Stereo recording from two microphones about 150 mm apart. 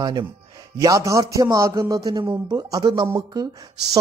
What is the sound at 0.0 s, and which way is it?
Speech, 30° right (ahead or behind).